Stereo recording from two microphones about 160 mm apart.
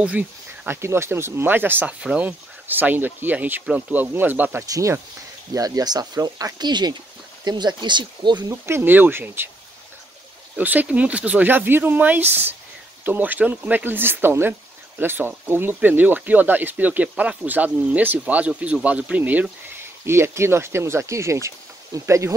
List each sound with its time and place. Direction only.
0.7 s speech: 15° right (ahead or behind)
8.6 s speech: 15° right (ahead or behind)
10.5 s speech: 10° right (ahead or behind)